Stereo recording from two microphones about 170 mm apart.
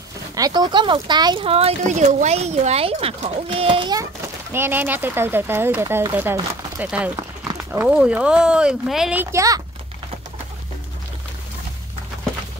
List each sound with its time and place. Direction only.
0.4 s speech: 25° right (ahead or behind)
4.5 s speech: 15° right (ahead or behind)
9.2 s speech: 15° right (ahead or behind)